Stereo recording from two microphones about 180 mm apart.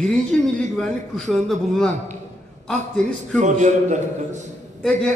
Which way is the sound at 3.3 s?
40° right (ahead or behind).